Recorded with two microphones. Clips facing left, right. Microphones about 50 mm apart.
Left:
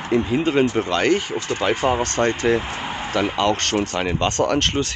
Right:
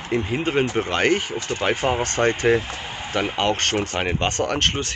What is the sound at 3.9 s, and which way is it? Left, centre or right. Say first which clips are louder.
Speech: left 2 dB; right.